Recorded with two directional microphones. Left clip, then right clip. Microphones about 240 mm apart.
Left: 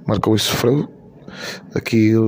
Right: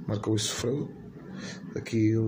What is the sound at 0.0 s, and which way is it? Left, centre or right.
Speech, left.